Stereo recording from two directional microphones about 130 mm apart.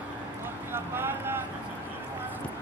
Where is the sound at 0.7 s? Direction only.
15° right (ahead or behind).